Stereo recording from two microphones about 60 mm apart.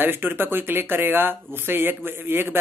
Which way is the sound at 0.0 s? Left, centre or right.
Right.